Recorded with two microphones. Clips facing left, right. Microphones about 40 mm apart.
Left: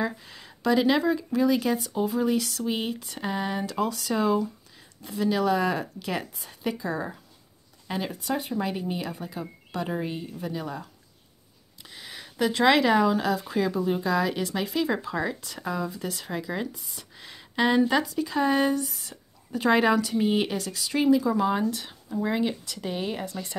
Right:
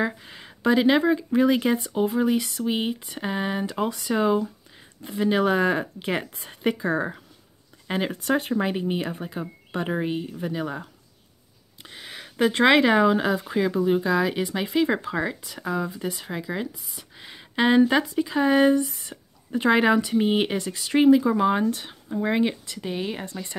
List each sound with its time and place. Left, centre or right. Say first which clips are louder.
0.0 s speech: right 3 dB; right
1.3 s speech: right 3 dB; right
8.2 s speech: right 5 dB; right
8.5 s speech: right 4 dB; right
15.2 s speech: right 1 dB; centre
18.9 s a sound: right 2 dB; right
19.7 s speech: right 2 dB; centre
22.8 s speech: right 1 dB; centre